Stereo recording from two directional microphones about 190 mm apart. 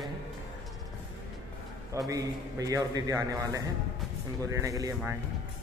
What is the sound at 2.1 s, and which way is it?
A man's voice, 20° right (ahead or behind).